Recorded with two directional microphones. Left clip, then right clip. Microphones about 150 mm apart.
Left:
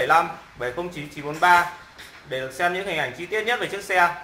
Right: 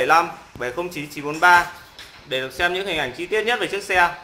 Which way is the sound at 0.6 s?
20° left (ahead or behind).